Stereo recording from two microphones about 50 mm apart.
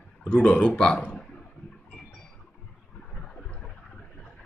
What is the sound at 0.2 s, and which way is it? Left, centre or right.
Speech, left.